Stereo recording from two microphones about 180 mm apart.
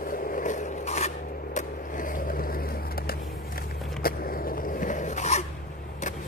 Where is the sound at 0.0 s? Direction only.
50° left (ahead or behind).